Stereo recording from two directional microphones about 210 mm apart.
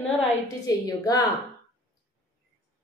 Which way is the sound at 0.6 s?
15° left (ahead or behind).